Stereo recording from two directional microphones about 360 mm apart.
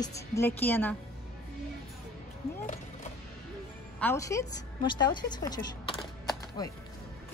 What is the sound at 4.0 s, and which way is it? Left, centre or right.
A woman's voice, centre.